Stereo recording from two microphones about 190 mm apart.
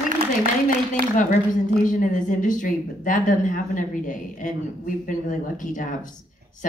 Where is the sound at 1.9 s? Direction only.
45° left (ahead or behind).